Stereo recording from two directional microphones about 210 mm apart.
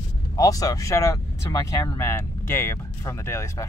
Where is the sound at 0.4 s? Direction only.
15° left (ahead or behind).